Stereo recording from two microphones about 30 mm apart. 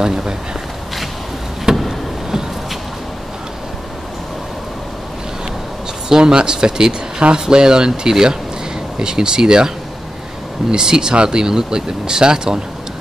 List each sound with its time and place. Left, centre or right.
0.0 s speech: right
1.7 s a sound: right
6.0 s speech: right
10.7 s speech: right